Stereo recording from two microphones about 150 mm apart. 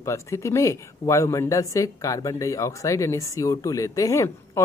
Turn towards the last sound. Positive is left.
turn(degrees=20)  # may be behind; listen again after turning